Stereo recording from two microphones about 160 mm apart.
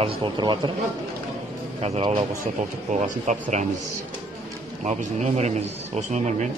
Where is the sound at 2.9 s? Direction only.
50° right (ahead or behind).